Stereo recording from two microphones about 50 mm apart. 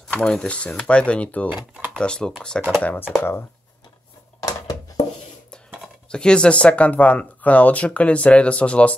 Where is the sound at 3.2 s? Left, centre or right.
Left.